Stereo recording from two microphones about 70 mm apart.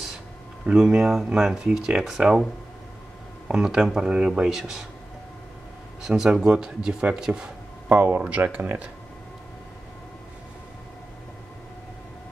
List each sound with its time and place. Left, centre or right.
0.7 s speech: centre
3.4 s speech: centre
6.0 s speech: centre
7.9 s speech: right